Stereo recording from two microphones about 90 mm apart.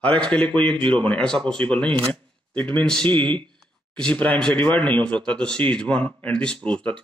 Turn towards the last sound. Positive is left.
turn(degrees=10)  # may be behind; listen again after turning